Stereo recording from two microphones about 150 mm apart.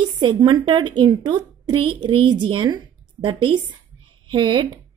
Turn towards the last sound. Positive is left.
turn(degrees=-30)  # may be behind; listen again after turning